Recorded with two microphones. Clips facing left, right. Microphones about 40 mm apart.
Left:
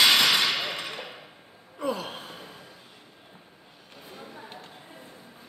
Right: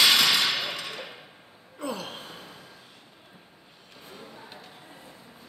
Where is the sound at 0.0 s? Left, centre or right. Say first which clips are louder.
Left 1 dB; left.